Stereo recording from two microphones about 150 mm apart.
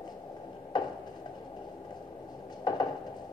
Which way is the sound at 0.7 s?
30° left (ahead or behind).